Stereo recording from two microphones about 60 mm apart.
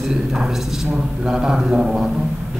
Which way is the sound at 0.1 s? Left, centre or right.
Centre.